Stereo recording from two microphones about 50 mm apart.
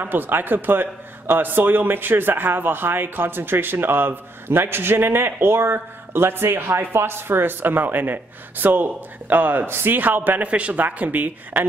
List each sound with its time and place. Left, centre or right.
0.0 s a man's voice: right
10.4 s speech: right